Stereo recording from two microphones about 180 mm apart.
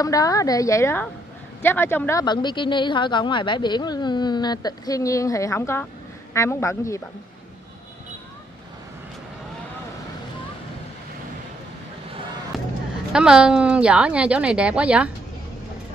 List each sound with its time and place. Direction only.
0.0 s a woman's voice: 20° left (ahead or behind)
12.5 s a sound: centre (ahead or behind)
13.1 s a woman's voice: 5° right (ahead or behind)